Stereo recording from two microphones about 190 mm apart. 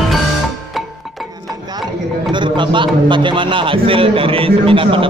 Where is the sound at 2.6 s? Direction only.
25° right (ahead or behind).